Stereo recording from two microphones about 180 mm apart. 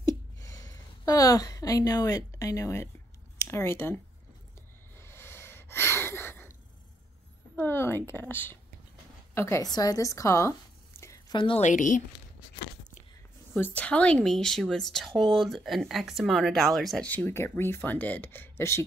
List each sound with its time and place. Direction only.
0.4 s speech: 20° left (ahead or behind)
4.9 s a sound: 15° left (ahead or behind)
7.5 s speech: 10° left (ahead or behind); by 11.6 s 30° left (ahead or behind)
11.6 s a woman's voice: 45° left (ahead or behind)
13.6 s speech: 10° left (ahead or behind)